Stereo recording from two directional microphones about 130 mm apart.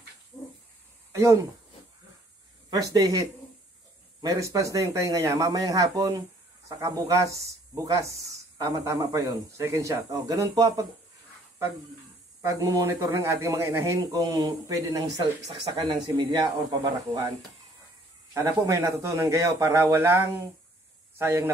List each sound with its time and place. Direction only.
1.1 s speech: 20° right (ahead or behind)
2.7 s speech: 30° right (ahead or behind)
12.4 s speech: 25° right (ahead or behind)
18.3 s speech: 25° right (ahead or behind)